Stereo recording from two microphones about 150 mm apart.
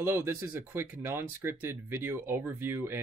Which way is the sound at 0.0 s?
15° right (ahead or behind).